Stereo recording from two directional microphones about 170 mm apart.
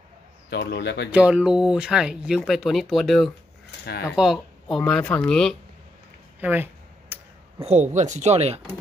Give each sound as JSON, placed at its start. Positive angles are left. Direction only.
{"t": 0.5, "sound": "speech", "side_deg": 75}
{"t": 1.1, "sound": "speech", "side_deg": -5}
{"t": 6.4, "sound": "a sound", "side_deg": -10}
{"t": 7.6, "sound": "speech", "side_deg": -45}